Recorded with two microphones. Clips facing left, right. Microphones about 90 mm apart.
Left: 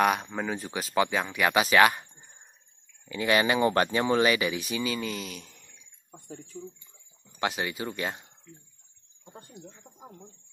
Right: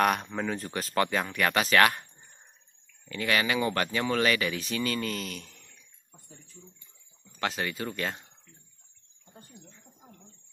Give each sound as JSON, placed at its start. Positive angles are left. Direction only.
{"t": 0.0, "sound": "speech", "side_deg": 5}
{"t": 3.1, "sound": "speech", "side_deg": 15}
{"t": 6.2, "sound": "speech", "side_deg": 60}
{"t": 7.3, "sound": "speech", "side_deg": 10}
{"t": 9.2, "sound": "a sound", "side_deg": 70}